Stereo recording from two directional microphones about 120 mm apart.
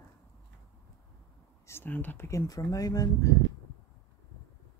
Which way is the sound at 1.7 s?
15° left (ahead or behind).